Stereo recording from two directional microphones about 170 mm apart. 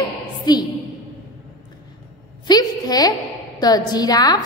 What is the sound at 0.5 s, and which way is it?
Speech, 25° left (ahead or behind).